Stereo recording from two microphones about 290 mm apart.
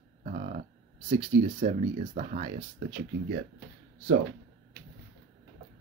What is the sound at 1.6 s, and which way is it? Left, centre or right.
Speech, right.